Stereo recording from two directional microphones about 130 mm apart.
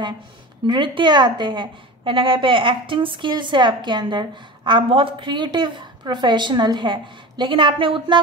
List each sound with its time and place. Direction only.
0.7 s a woman's voice: 40° right (ahead or behind)